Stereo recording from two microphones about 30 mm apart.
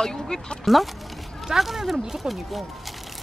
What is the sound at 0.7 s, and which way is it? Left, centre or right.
Speech, centre.